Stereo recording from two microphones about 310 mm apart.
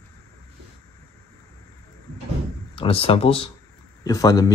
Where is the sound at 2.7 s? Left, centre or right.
Centre.